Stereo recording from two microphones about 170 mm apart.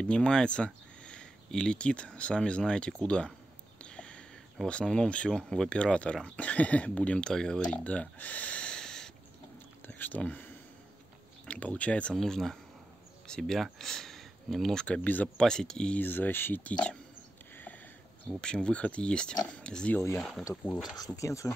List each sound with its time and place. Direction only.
0.0 s speech: 5° left (ahead or behind)
7.7 s a sound: 5° left (ahead or behind)
9.8 s speech: 10° left (ahead or behind)
18.4 s speech: 5° left (ahead or behind)
20.9 s speech: 20° left (ahead or behind)